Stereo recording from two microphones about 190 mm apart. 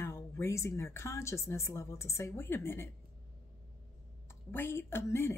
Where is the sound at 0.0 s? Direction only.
15° left (ahead or behind).